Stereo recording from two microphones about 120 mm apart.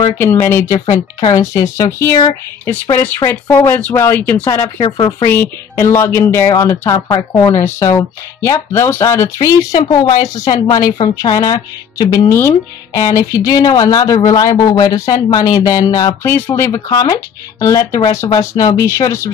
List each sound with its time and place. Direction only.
0.2 s speech: 20° left (ahead or behind)
4.8 s speech: 40° left (ahead or behind)
5.2 s speech: 20° left (ahead or behind)
16.9 s speech: 35° left (ahead or behind)